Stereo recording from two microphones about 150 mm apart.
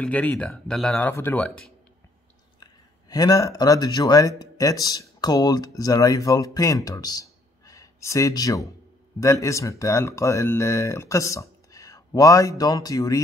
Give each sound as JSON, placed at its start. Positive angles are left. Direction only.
{"t": 0.0, "sound": "speech", "side_deg": 10}
{"t": 2.6, "sound": "speech", "side_deg": 25}